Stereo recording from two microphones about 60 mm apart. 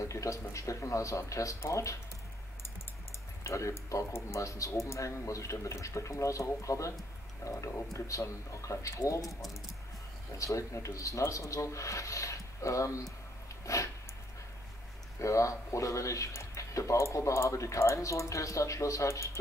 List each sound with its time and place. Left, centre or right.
0.1 s speech: left
3.4 s speech: left
10.3 s speech: left
13.7 s a sound: left
15.1 s speech: left